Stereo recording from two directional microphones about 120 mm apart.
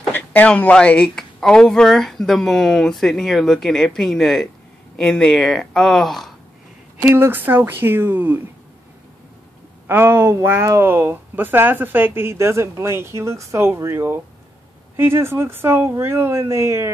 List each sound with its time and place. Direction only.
0.1 s speech: 15° left (ahead or behind)
7.1 s speech: 20° right (ahead or behind)
9.8 s speech: 20° right (ahead or behind)